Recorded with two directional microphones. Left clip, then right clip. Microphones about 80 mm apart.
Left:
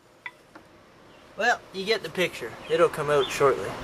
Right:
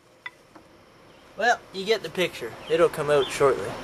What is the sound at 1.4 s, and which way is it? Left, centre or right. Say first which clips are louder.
Speech: right 1 dB; centre.